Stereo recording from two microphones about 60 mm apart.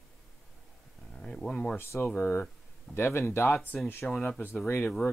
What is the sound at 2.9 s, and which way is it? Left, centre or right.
Speech, left.